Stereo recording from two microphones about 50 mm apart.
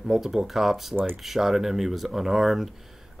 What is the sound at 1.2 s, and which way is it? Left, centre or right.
Speech, centre.